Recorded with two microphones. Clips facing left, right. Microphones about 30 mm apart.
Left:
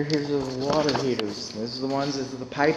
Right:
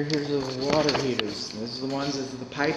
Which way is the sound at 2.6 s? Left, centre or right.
Centre.